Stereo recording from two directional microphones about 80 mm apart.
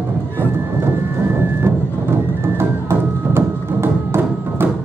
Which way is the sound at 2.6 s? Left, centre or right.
Right.